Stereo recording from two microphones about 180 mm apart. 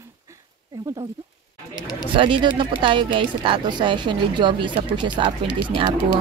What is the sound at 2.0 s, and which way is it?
Speech, 30° right (ahead or behind).